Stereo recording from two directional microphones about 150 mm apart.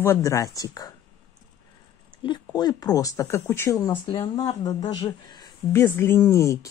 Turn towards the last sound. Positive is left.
turn(degrees=20)  # may be behind; listen again after turning